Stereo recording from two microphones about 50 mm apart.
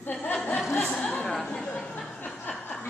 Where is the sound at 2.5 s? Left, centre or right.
Left.